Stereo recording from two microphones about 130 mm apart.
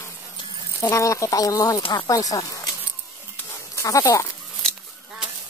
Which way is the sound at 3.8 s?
25° left (ahead or behind).